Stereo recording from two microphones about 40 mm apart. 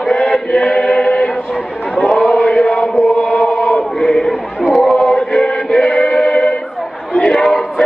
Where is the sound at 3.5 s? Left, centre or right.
Left.